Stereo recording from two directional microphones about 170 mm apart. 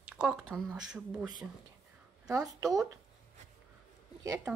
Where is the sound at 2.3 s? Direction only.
20° right (ahead or behind).